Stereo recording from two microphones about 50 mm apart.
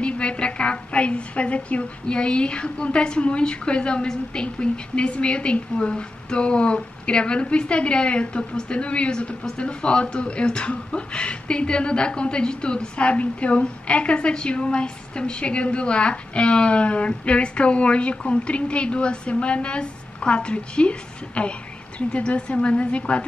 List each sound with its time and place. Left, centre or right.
0.0 s a woman's voice: left